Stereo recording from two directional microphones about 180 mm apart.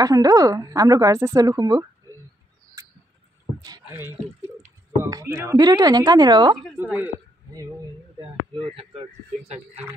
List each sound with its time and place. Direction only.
0.0 s speech: 20° right (ahead or behind)
2.8 s bird: 15° right (ahead or behind)
5.0 s speech: 15° right (ahead or behind)
6.8 s a man's voice: 10° right (ahead or behind)
8.2 s speech: 30° right (ahead or behind)